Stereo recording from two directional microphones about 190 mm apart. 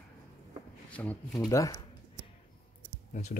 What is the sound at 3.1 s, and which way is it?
Speech, 40° left (ahead or behind).